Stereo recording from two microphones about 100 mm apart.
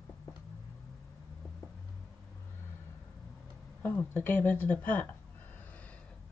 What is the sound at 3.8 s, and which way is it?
Speech, 20° left (ahead or behind).